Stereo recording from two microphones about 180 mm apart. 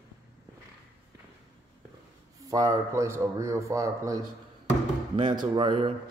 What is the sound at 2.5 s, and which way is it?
Speech, 20° right (ahead or behind).